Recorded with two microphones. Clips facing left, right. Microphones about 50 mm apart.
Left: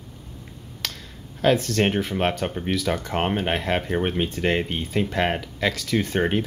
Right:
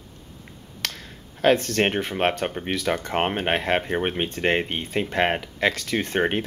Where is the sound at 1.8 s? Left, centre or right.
Right.